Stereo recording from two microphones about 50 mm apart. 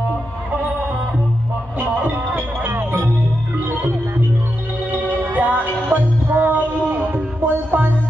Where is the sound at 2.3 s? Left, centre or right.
Right.